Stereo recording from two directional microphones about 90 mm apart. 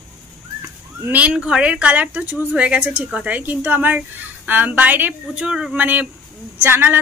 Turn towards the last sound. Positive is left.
turn(degrees=-25)  # may be behind; listen again after turning